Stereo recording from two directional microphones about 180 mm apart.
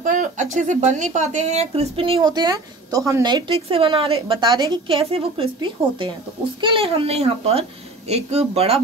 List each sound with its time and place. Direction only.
0.0 s a woman's voice: 45° right (ahead or behind)